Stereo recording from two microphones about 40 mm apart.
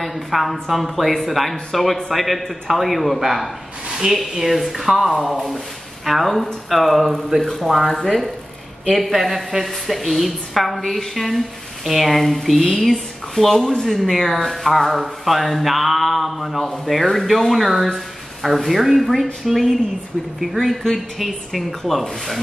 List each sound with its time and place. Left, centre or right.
0.0 s speech: centre
3.9 s speech: centre
4.2 s speech: centre
7.3 s speech: right
7.6 s speech: centre
13.6 s speech: centre
13.8 s speech: centre